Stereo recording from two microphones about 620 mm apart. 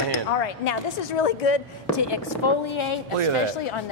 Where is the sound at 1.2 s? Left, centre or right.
Left.